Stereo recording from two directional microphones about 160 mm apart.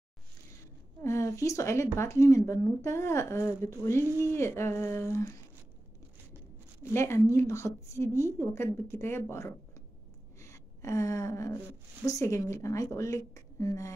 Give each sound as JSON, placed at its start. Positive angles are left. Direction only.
{"t": 1.0, "sound": "speech", "side_deg": 15}
{"t": 6.9, "sound": "speech", "side_deg": 15}
{"t": 10.4, "sound": "gasp", "side_deg": 20}
{"t": 12.1, "sound": "a woman's voice", "side_deg": 20}